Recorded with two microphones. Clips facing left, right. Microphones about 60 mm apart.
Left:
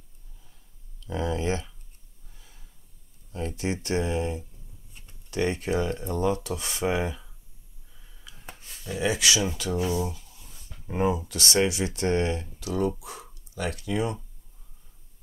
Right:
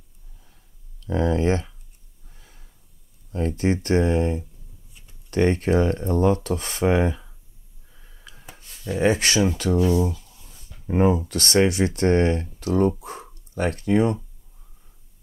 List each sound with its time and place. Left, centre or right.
1.0 s speech: right
2.2 s gasp: right
3.3 s speech: right
7.9 s a sound: right
8.5 s speech: right
9.8 s speech: centre
10.9 s speech: right
11.2 s speech: right